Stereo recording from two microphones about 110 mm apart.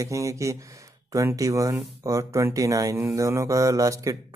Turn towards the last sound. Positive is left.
turn(degrees=-30)  # may be behind; listen again after turning